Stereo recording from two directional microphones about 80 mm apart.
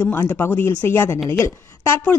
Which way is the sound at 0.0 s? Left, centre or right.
Left.